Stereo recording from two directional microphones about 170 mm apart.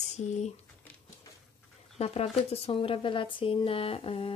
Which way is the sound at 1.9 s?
40° left (ahead or behind).